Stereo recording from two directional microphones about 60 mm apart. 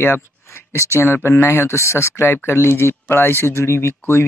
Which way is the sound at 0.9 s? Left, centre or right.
Left.